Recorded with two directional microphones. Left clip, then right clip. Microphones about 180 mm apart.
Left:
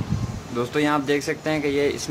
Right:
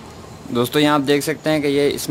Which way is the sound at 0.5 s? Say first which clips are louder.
Right 6 dB; 45° right (ahead or behind).